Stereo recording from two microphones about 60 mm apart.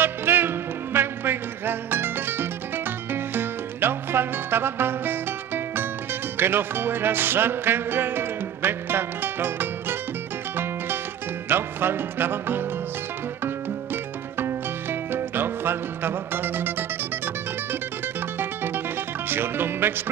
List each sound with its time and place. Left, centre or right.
0.0 s music: right
14.4 s music: right
18.4 s music: right